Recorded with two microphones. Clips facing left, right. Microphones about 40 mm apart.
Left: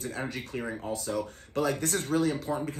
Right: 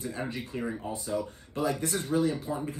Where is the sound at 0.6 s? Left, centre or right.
Centre.